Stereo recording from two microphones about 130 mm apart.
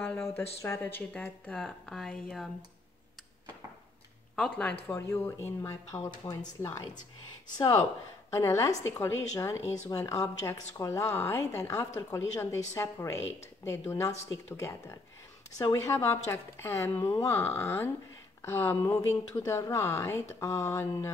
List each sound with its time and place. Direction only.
0.0 s speech: 5° left (ahead or behind)
0.4 s speech: 20° left (ahead or behind); by 2.5 s 5° left (ahead or behind)
4.4 s a woman's voice: 10° left (ahead or behind)
6.2 s speech: 40° left (ahead or behind)
6.6 s a woman's voice: 20° left (ahead or behind)